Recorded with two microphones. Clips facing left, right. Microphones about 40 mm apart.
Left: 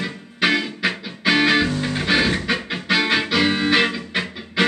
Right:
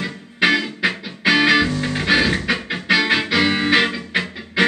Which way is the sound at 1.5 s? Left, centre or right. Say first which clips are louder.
Right 2 dB; centre.